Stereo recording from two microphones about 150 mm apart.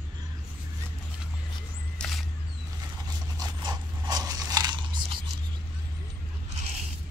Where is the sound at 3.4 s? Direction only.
30° right (ahead or behind).